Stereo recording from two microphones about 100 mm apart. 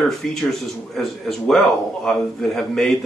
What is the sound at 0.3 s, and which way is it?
Speech, centre (ahead or behind).